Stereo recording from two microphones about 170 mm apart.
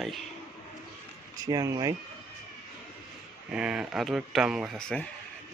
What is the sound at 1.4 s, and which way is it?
Speech, 20° right (ahead or behind).